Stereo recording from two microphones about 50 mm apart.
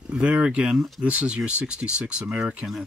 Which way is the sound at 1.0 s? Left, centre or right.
Right.